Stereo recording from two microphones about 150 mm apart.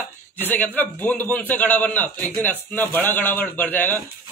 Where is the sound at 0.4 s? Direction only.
10° left (ahead or behind).